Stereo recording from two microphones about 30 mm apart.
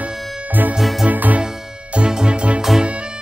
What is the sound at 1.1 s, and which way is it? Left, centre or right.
Music, right.